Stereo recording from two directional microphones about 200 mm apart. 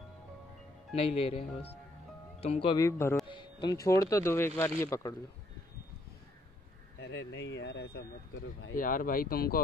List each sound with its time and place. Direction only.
0.9 s speech: 30° left (ahead or behind)
7.0 s speech: 65° left (ahead or behind)
8.7 s speech: 45° left (ahead or behind)